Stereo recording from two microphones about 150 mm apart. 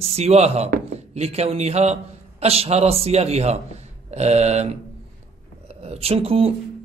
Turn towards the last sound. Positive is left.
turn(degrees=-40)  # may be behind; listen again after turning